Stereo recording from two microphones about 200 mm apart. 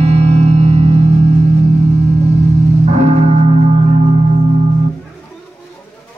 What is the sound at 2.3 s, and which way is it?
Gong, 35° right (ahead or behind).